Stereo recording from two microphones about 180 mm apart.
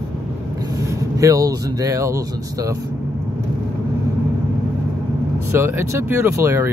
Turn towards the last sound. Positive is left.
turn(degrees=-15)  # may be behind; listen again after turning